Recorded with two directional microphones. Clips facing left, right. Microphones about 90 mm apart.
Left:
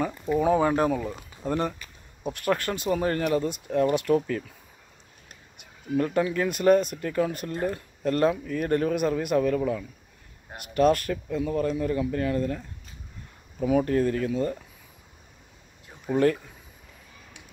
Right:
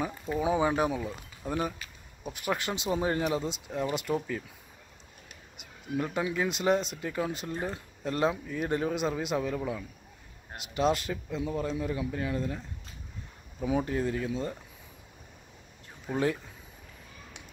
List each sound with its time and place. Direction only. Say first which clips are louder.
0.0 s speech: left 6 dB; 10° right (ahead or behind)
5.9 s speech: left 6 dB; 15° right (ahead or behind)
10.7 s speech: left 6 dB; 20° right (ahead or behind)
13.7 s speech: left 6 dB; 20° right (ahead or behind)
16.1 s speech: left 6 dB; centre (ahead or behind)